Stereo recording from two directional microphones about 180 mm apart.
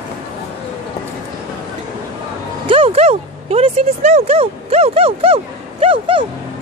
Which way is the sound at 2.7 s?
30° right (ahead or behind).